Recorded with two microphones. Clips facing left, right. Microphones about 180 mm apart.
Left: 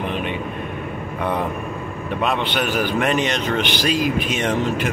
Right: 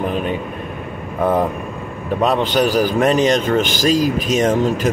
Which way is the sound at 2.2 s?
40° right (ahead or behind).